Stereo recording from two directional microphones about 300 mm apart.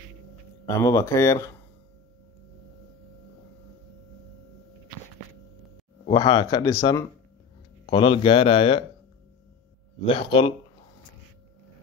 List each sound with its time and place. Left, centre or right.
0.7 s speech: centre
6.0 s speech: centre
10.1 s speech: centre